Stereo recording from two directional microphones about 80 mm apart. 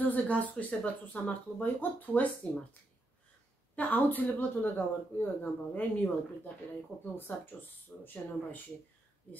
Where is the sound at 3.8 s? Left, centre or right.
Left.